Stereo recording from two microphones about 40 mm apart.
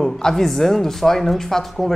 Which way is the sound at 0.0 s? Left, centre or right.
Centre.